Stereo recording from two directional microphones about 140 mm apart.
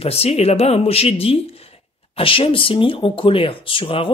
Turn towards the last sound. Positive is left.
turn(degrees=40)  # may be behind; listen again after turning